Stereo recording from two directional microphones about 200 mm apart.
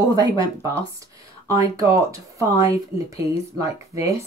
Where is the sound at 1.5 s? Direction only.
15° right (ahead or behind).